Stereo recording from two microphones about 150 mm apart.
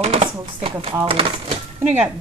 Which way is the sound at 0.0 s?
45° right (ahead or behind).